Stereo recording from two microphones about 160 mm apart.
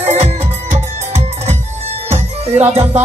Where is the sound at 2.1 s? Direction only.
40° right (ahead or behind).